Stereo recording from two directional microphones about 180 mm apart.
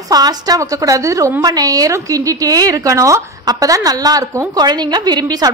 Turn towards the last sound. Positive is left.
turn(degrees=-20)  # may be behind; listen again after turning